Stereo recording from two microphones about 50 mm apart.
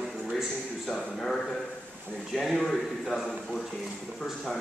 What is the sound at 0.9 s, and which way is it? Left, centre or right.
A man's voice, centre.